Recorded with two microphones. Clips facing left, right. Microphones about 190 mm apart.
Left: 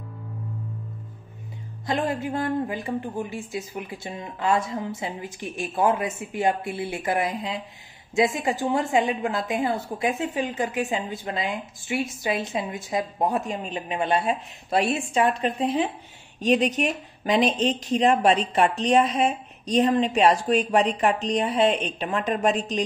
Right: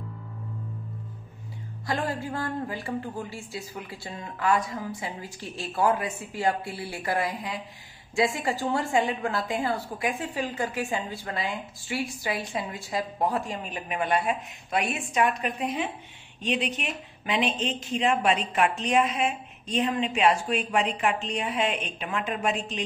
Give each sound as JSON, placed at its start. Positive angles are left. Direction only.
{"t": 1.9, "sound": "a woman's voice", "side_deg": 20}
{"t": 16.3, "sound": "speech", "side_deg": 45}